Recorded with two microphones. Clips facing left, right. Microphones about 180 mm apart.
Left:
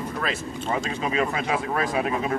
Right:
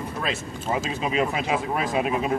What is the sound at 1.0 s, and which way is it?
Speech, 20° right (ahead or behind).